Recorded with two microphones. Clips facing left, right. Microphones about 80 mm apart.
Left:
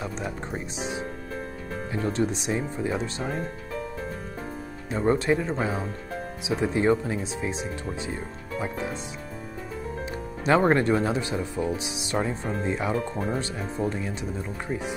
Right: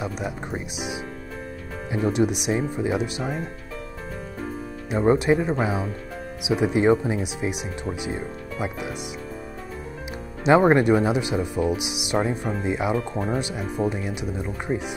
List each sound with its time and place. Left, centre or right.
0.0 s speech: centre
4.8 s speech: centre
10.4 s speech: centre